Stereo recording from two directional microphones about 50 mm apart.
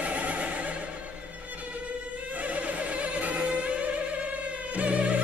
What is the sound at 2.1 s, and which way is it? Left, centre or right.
Music, right.